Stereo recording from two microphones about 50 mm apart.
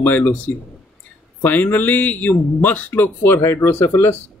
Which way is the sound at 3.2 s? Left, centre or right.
Left.